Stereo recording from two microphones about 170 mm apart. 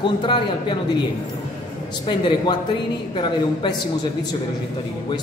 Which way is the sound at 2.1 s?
25° left (ahead or behind).